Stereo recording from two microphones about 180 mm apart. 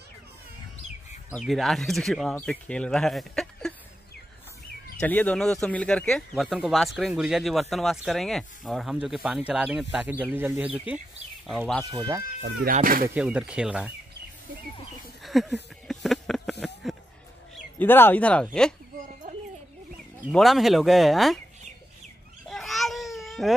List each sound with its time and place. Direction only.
1.3 s speech: centre (ahead or behind)
5.0 s speech: 10° left (ahead or behind); by 11.0 s 10° right (ahead or behind)
11.4 s speech: centre (ahead or behind)
11.8 s speech: 20° right (ahead or behind)
12.7 s speech: 50° right (ahead or behind)
13.1 s speech: 5° right (ahead or behind)
15.2 s speech: centre (ahead or behind)
15.9 s a sound: centre (ahead or behind)
17.7 s speech: 10° left (ahead or behind)
20.2 s speech: centre (ahead or behind)
22.5 s baby cry: centre (ahead or behind)